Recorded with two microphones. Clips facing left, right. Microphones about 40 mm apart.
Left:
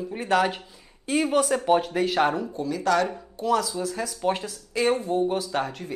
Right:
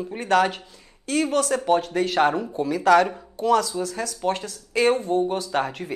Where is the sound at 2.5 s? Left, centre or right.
Centre.